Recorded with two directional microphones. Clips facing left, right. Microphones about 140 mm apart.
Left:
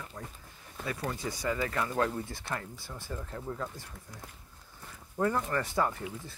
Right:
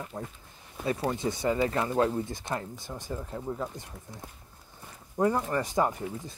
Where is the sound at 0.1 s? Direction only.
25° right (ahead or behind).